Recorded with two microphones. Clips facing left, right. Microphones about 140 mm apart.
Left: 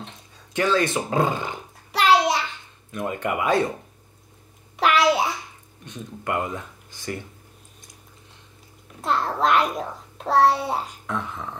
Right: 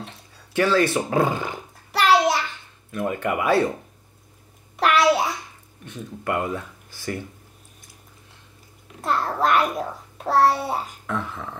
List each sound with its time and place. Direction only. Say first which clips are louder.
0.5 s speech: right 2 dB; 20° left (ahead or behind)
1.9 s child singing: even; centre (ahead or behind)
2.9 s speech: right 2 dB; 20° left (ahead or behind)
4.7 s babbling: right 1 dB; centre (ahead or behind)
5.9 s speech: right 1 dB; 20° left (ahead or behind)
9.0 s a child's voice: even; centre (ahead or behind)
11.1 s speech: right 2 dB; 20° left (ahead or behind)